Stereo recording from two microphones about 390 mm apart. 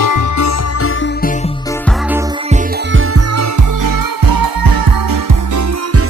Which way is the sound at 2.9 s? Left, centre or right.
Right.